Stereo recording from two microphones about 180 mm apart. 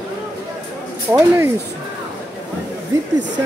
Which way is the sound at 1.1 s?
15° right (ahead or behind).